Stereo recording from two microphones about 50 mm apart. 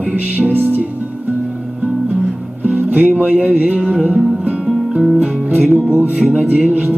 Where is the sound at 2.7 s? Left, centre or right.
Right.